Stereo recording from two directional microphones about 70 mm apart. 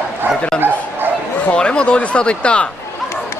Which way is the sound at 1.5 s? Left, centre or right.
Centre.